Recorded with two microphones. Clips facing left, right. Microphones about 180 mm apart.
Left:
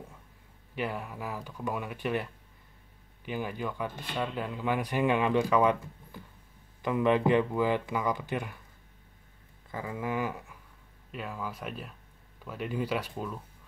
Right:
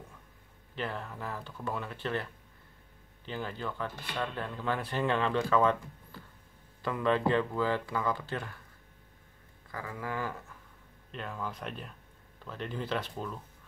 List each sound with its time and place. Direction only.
0.7 s speech: 10° left (ahead or behind)
3.3 s speech: 15° left (ahead or behind)
9.7 s speech: 20° left (ahead or behind)